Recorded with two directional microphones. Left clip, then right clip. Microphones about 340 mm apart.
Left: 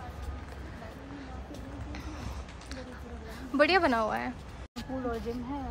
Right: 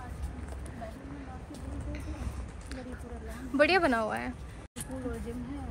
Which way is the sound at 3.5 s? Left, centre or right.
Centre.